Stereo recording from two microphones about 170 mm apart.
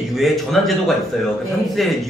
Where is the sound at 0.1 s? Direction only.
Centre (ahead or behind).